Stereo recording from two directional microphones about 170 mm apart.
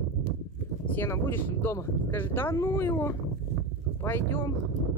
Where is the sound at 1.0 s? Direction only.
15° left (ahead or behind).